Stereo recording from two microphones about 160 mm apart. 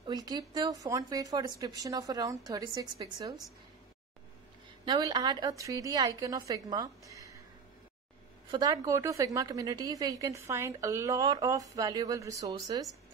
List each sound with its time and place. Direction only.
0.0 s a woman's voice: 25° right (ahead or behind)
4.8 s a woman's voice: 25° right (ahead or behind)
8.5 s a woman's voice: 25° right (ahead or behind)